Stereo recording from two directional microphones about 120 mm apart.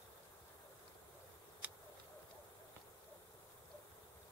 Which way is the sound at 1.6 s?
10° right (ahead or behind).